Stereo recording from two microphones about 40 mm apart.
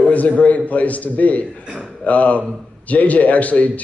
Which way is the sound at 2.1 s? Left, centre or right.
Left.